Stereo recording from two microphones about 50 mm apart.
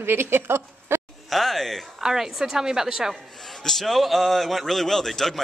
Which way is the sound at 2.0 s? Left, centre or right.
Centre.